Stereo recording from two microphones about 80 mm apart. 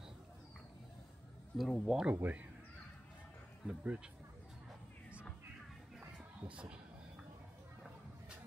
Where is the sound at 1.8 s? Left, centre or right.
Centre.